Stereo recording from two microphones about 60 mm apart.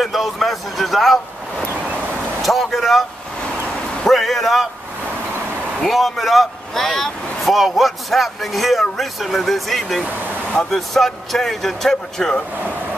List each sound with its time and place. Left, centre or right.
0.0 s a man's voice: centre
2.4 s vehicle: centre
4.0 s a man's voice: centre
5.8 s speech: centre